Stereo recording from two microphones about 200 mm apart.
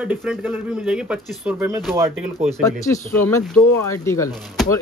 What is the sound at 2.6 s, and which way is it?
Speech, 15° left (ahead or behind).